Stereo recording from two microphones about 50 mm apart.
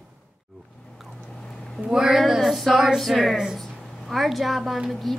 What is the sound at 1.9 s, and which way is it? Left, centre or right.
A woman's voice, centre.